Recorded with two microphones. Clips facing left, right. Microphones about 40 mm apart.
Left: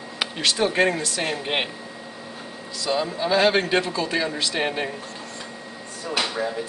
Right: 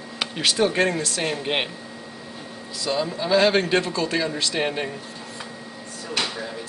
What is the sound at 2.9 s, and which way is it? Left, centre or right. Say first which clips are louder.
A man's voice: right 1 dB; centre.